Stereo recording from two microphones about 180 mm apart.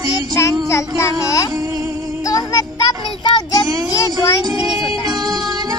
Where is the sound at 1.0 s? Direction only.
20° left (ahead or behind).